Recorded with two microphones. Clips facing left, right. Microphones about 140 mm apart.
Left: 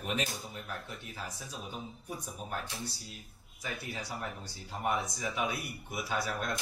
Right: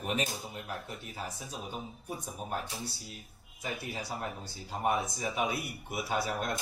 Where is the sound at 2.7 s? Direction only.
Centre (ahead or behind).